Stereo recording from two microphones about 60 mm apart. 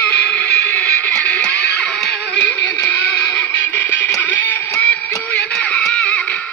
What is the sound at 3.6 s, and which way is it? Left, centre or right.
Music, left.